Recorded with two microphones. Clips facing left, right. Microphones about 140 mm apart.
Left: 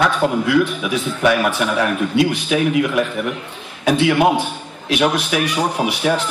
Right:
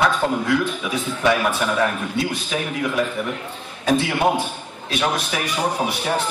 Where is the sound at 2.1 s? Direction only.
80° left.